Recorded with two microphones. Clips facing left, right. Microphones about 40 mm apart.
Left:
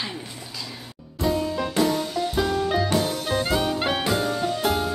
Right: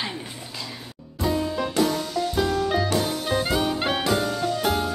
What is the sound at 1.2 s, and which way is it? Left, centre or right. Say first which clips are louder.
Music: even; centre.